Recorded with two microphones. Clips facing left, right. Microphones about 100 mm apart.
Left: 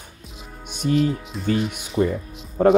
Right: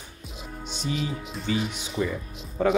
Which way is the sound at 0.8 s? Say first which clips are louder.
Left 10 dB; 55° left (ahead or behind).